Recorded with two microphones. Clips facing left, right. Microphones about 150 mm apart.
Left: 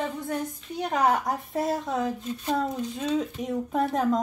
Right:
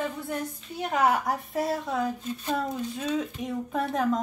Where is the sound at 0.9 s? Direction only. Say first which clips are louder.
Even; 5° right (ahead or behind).